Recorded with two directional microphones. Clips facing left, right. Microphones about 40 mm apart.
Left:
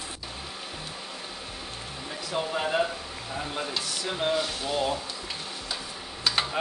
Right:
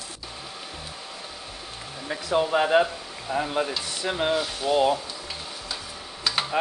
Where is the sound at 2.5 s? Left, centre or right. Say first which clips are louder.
Right 7 dB; right.